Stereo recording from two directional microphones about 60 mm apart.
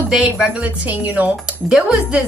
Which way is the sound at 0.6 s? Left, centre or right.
Right.